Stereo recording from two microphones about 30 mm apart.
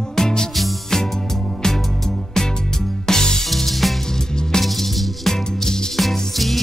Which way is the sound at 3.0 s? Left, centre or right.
Left.